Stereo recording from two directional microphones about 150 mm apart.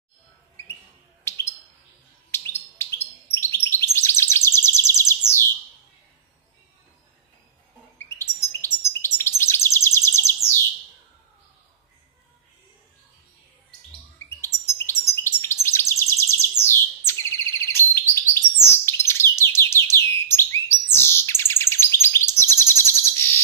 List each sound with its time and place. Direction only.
1.3 s bird: 15° left (ahead or behind)
2.3 s chirp: 15° left (ahead or behind)
8.0 s bird: 15° left (ahead or behind)
9.4 s chirp: 15° left (ahead or behind)
14.1 s bird: 15° left (ahead or behind)